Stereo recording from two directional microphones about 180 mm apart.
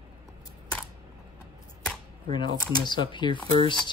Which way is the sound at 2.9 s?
25° left (ahead or behind).